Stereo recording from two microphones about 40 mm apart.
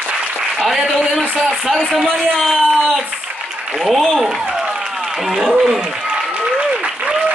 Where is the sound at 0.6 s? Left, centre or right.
Centre.